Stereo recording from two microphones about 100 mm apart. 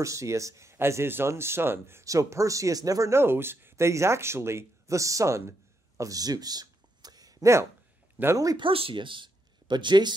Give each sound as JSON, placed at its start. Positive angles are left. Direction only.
{"t": 0.0, "sound": "speech", "side_deg": -30}
{"t": 5.9, "sound": "a sound", "side_deg": -35}
{"t": 8.2, "sound": "speech", "side_deg": -25}
{"t": 8.5, "sound": "speech", "side_deg": -65}